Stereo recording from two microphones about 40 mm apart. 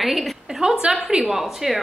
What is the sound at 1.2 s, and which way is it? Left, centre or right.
Speech, centre.